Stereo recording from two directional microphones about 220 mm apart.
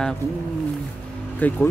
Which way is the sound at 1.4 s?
5° left (ahead or behind).